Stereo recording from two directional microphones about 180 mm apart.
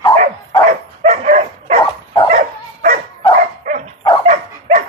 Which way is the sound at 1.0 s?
45° right (ahead or behind).